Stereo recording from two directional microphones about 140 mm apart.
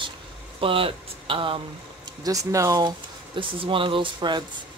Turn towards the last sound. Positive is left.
turn(degrees=-35)  # may be behind; listen again after turning